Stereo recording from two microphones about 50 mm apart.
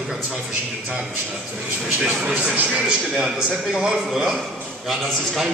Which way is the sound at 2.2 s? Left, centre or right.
Right.